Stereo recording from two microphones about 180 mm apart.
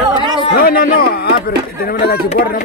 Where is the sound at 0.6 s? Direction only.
55° left (ahead or behind).